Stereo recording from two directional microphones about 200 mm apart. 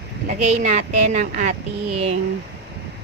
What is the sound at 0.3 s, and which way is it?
A woman's voice, 40° right (ahead or behind).